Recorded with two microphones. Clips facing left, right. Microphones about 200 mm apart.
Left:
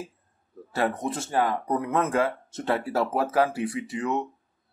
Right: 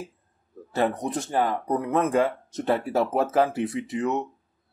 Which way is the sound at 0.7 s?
20° right (ahead or behind).